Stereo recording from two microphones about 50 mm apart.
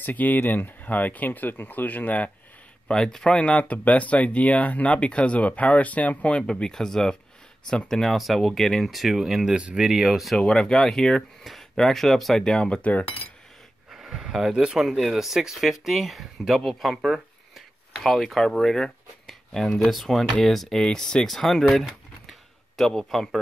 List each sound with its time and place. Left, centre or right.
0.0 s speech: left
2.9 s speech: centre; by 6.4 s left
6.4 s speech: centre
9.6 s speech: right
9.8 s speech: centre
10.4 s speech: centre
13.9 s a sound: centre
14.5 s speech: centre
14.8 s speech: centre